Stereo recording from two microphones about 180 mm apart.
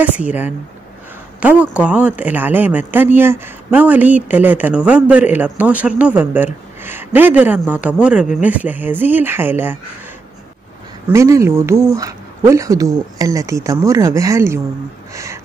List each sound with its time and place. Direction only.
0.0 s speech: 10° right (ahead or behind)
11.1 s speech: 15° right (ahead or behind)